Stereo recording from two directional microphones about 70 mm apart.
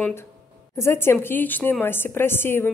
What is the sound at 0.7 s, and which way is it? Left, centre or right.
A woman's voice, left.